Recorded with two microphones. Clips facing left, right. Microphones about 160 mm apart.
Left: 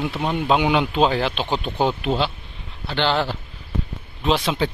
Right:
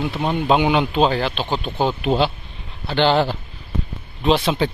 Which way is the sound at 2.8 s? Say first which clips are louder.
Right 4 dB; 40° right (ahead or behind).